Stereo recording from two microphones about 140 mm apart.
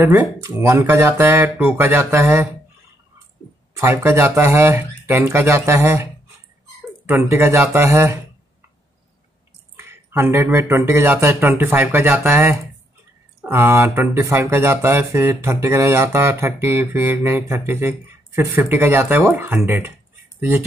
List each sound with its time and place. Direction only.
0.0 s speech: 15° right (ahead or behind)
3.7 s speech: 20° right (ahead or behind)
7.1 s speech: 20° right (ahead or behind)
9.8 s speech: 15° right (ahead or behind)